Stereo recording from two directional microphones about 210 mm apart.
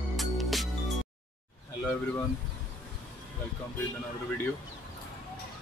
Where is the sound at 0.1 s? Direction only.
Centre (ahead or behind).